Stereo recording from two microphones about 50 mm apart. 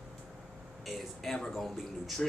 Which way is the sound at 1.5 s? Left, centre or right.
Centre.